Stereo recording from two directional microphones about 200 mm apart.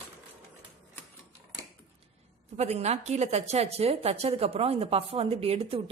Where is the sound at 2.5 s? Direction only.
35° right (ahead or behind).